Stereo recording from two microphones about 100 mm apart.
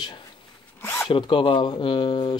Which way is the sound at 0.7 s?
20° left (ahead or behind).